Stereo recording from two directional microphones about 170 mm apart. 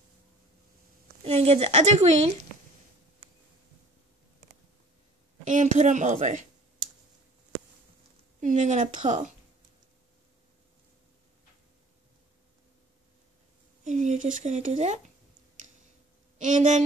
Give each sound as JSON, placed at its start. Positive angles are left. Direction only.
{"t": 1.2, "sound": "speech", "side_deg": -35}
{"t": 5.4, "sound": "speech", "side_deg": -45}
{"t": 8.4, "sound": "speech", "side_deg": -45}
{"t": 13.8, "sound": "speech", "side_deg": -45}
{"t": 16.3, "sound": "speech", "side_deg": -45}